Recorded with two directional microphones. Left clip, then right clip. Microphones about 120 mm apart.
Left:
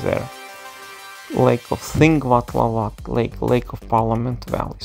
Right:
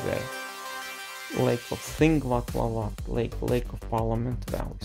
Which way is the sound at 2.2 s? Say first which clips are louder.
Left 11 dB; 45° left (ahead or behind).